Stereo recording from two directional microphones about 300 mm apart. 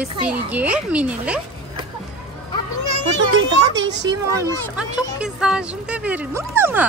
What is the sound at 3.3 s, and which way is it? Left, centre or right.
Speech, right.